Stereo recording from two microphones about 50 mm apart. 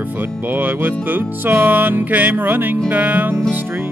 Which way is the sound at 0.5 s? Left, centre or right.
Right.